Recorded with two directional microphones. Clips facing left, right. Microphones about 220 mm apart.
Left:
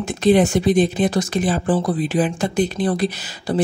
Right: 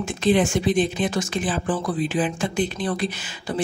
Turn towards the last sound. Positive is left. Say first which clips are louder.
# left 6 dB
turn(degrees=35)  # may be behind; listen again after turning